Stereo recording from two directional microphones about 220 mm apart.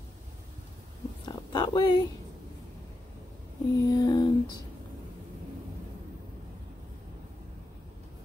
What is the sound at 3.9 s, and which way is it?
Lullaby, 20° left (ahead or behind).